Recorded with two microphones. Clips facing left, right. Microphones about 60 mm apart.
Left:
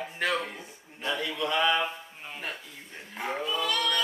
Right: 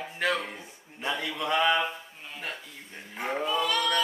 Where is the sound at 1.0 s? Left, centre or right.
Right.